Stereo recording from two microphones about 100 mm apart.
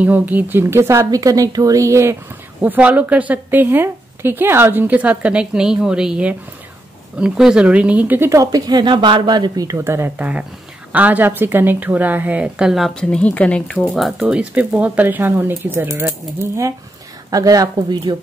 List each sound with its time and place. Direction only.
0.0 s speech: 15° right (ahead or behind)
2.6 s speech: 15° right (ahead or behind)
8.3 s a woman's voice: 35° right (ahead or behind)
9.8 s speech: 25° right (ahead or behind); by 12.9 s 5° right (ahead or behind)
13.1 s speech: 15° left (ahead or behind)
13.9 s speech: centre (ahead or behind); by 18.1 s 45° right (ahead or behind)